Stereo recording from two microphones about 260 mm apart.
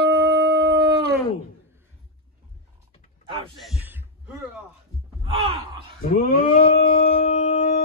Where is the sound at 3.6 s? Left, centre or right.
Centre.